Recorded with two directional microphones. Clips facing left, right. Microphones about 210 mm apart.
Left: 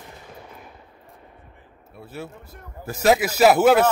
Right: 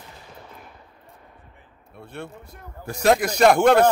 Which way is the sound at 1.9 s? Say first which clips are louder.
Left 1 dB; 5° left (ahead or behind).